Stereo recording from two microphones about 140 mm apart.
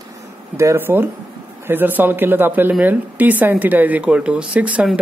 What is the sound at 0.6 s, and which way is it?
A woman's voice, 20° right (ahead or behind).